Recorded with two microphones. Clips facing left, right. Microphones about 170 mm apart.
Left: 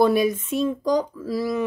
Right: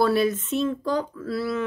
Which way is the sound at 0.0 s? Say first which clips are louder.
Left 2 dB; 15° left (ahead or behind).